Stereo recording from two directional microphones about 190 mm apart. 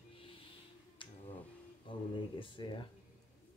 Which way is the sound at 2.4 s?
25° left (ahead or behind).